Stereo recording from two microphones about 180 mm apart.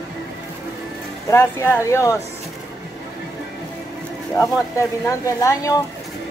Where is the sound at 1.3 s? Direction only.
15° left (ahead or behind).